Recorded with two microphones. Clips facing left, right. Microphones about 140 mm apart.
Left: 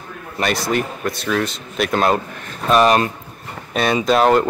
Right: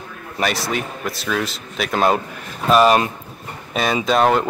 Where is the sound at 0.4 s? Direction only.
Centre (ahead or behind).